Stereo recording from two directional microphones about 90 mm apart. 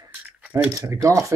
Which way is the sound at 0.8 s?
40° right (ahead or behind).